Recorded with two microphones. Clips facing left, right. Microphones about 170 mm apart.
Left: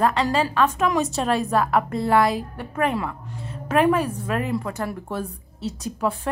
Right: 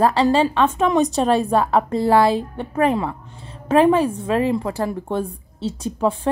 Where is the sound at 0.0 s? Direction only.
30° right (ahead or behind).